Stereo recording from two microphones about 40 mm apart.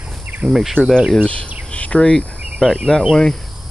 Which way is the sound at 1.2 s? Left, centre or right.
Left.